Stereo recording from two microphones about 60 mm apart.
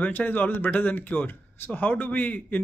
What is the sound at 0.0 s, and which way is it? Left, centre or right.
Speech, left.